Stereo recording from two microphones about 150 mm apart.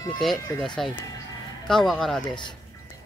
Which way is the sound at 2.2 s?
30° left (ahead or behind).